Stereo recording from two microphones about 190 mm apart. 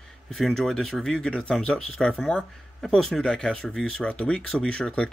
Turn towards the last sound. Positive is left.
turn(degrees=5)  # may be behind; listen again after turning